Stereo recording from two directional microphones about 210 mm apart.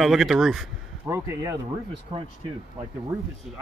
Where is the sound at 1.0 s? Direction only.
15° right (ahead or behind).